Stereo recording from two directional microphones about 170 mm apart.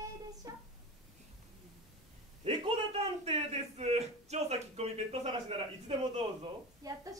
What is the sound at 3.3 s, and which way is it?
Speech, 40° right (ahead or behind).